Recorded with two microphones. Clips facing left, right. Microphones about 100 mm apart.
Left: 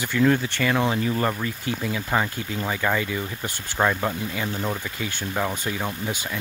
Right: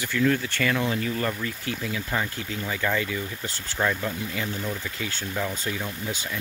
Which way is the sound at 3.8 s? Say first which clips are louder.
Left 4 dB; 30° left (ahead or behind).